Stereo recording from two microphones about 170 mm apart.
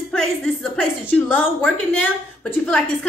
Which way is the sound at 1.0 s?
10° left (ahead or behind).